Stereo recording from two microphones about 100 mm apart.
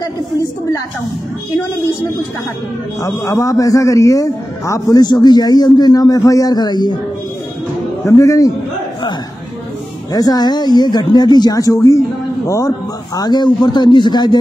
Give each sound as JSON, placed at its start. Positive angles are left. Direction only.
{"t": 3.0, "sound": "a man's voice", "side_deg": 35}
{"t": 8.0, "sound": "a man's voice", "side_deg": 35}
{"t": 10.1, "sound": "a man's voice", "side_deg": 40}